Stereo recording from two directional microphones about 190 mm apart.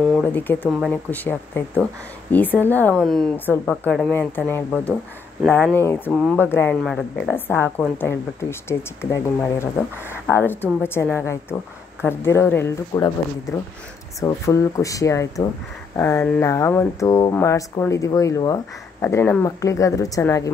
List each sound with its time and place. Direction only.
0.0 s speech: 5° left (ahead or behind)
14.2 s speech: 15° left (ahead or behind)